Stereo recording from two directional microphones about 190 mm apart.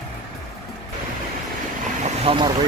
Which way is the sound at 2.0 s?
30° right (ahead or behind).